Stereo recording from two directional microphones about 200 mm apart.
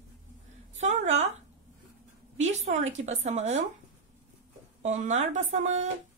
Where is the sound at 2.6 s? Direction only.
35° right (ahead or behind).